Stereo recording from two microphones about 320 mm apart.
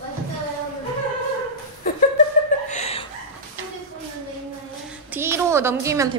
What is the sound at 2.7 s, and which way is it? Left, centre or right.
Chuckle, centre.